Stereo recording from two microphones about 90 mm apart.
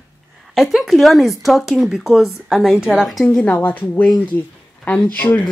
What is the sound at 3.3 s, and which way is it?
A woman's voice, 15° left (ahead or behind).